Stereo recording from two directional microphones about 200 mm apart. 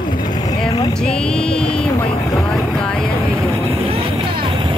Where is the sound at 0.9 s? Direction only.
5° left (ahead or behind).